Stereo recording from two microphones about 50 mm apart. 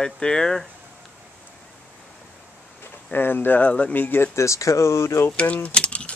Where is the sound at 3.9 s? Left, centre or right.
Left.